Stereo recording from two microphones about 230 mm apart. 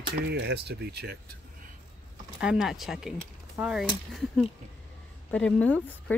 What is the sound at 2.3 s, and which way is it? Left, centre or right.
Speech, centre.